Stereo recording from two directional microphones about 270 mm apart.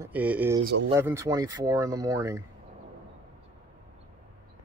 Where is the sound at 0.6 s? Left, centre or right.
Right.